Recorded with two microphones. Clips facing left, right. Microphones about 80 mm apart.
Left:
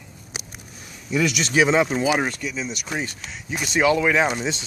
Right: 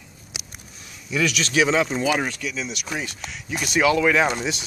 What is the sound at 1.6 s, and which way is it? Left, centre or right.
Speech, centre.